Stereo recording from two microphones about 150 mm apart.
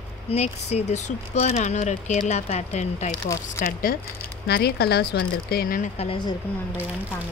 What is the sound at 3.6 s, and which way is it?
Speech, 70° left (ahead or behind).